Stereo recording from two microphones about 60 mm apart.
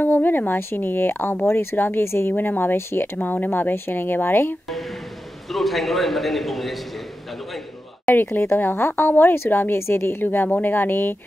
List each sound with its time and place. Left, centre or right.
0.0 s a woman's voice: left
2.3 s a woman's voice: left
5.5 s a man's voice: centre
8.1 s a woman's voice: left